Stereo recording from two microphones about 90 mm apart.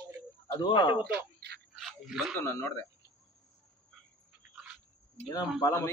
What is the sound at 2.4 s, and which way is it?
Speech, 25° left (ahead or behind).